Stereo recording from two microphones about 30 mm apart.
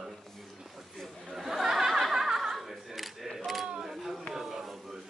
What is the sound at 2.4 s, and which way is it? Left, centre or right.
Camera, centre.